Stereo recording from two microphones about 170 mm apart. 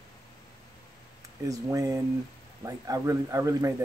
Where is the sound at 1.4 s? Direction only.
20° right (ahead or behind).